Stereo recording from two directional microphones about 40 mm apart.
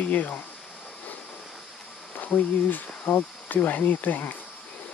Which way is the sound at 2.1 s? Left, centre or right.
Left.